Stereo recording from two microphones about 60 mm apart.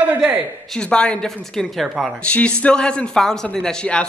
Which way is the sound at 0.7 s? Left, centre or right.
Centre.